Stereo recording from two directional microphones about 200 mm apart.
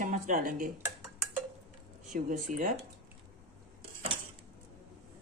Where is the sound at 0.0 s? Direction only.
40° right (ahead or behind).